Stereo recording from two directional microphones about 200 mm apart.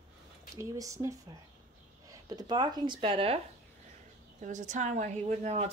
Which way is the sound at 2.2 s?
20° right (ahead or behind).